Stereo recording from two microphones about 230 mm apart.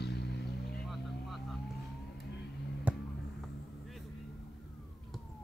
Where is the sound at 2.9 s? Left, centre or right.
Centre.